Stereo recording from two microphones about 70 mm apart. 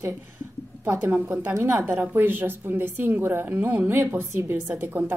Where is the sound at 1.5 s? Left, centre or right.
Right.